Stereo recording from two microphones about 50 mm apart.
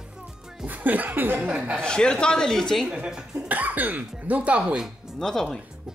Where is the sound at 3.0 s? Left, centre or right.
Centre.